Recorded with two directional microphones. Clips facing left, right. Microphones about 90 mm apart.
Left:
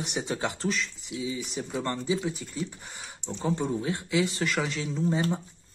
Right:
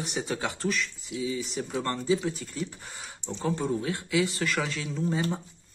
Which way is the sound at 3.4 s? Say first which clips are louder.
Even; 20° left (ahead or behind).